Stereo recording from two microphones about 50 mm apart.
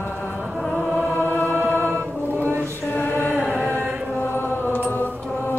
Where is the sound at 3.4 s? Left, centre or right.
Right.